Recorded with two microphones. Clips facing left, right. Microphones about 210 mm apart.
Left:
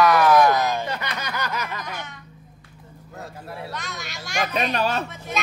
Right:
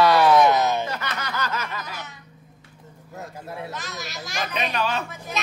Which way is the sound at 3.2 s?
20° right (ahead or behind).